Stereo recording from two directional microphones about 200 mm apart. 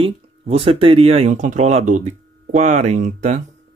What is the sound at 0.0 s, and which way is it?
Speech, 25° right (ahead or behind).